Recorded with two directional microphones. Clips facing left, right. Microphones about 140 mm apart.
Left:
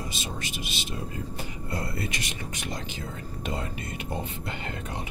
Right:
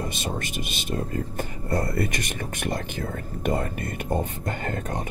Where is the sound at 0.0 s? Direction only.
50° right (ahead or behind).